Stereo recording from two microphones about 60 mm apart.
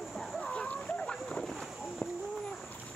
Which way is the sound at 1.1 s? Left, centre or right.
Centre.